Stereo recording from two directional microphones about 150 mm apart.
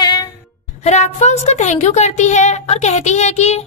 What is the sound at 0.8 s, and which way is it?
A woman's voice, 50° left (ahead or behind).